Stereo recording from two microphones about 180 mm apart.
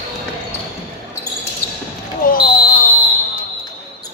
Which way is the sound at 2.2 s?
55° left (ahead or behind).